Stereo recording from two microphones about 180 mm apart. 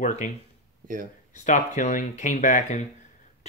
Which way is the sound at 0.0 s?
45° left (ahead or behind).